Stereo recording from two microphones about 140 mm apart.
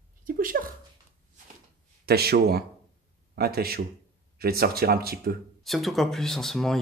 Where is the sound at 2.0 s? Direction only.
90° right.